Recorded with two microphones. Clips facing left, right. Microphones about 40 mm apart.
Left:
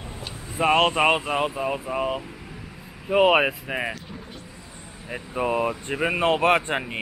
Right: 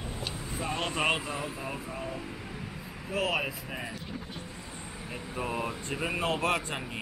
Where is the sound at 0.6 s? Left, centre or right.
Left.